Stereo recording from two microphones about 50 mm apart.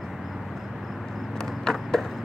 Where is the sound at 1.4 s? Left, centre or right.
Centre.